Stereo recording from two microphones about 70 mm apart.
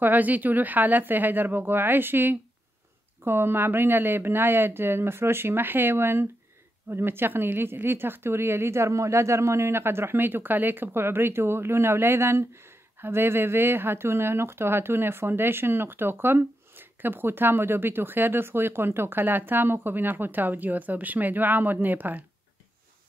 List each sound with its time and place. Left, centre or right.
0.0 s speech: right